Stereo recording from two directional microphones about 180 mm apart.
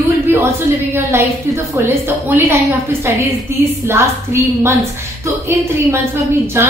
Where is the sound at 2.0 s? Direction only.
10° right (ahead or behind).